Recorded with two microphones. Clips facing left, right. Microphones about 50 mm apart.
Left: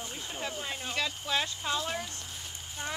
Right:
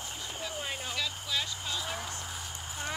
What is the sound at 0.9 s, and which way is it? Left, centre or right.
Speech, left.